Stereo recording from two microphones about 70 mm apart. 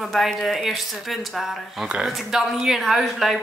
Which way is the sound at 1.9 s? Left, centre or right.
Centre.